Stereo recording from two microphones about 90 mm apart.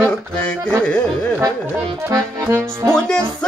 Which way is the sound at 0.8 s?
10° left (ahead or behind).